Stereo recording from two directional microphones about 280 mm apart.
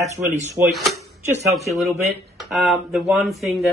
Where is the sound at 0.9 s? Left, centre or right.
Right.